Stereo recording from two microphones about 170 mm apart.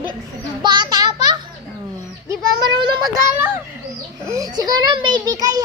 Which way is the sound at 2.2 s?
25° right (ahead or behind).